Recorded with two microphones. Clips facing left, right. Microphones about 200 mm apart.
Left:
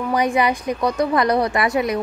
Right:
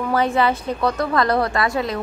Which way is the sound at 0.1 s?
15° left (ahead or behind).